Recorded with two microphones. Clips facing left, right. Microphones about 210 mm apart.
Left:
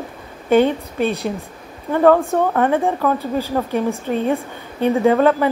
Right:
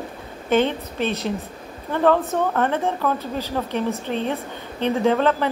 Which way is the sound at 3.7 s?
45° left (ahead or behind).